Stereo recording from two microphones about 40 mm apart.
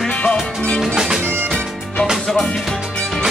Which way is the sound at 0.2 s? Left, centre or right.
Left.